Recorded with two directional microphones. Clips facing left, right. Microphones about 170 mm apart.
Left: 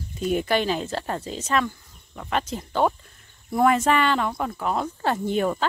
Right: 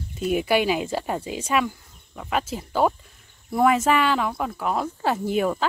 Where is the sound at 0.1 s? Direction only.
5° right (ahead or behind).